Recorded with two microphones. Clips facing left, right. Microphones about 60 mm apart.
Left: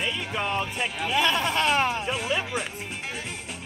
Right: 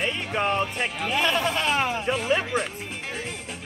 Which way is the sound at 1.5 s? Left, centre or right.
Left.